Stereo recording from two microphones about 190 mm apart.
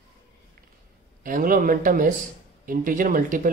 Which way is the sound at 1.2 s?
45° right (ahead or behind).